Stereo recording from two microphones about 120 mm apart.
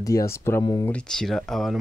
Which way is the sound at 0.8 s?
10° left (ahead or behind).